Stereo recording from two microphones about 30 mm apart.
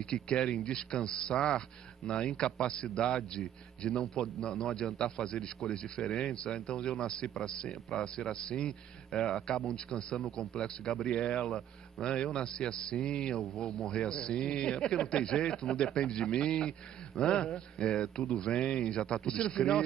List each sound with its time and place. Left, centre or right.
0.1 s a man's voice: left
13.6 s speech: centre
13.8 s a man's voice: left